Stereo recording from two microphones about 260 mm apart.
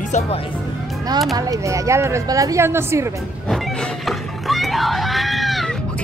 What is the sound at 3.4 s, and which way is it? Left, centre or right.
Music, centre.